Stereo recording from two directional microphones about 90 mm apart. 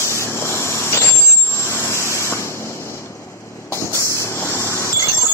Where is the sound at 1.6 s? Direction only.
30° left (ahead or behind).